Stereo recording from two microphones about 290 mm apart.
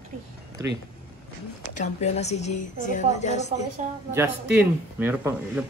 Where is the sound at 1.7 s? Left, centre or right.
Left.